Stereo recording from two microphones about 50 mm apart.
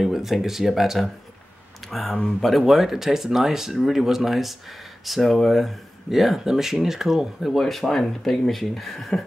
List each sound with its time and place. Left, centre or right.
0.0 s speech: centre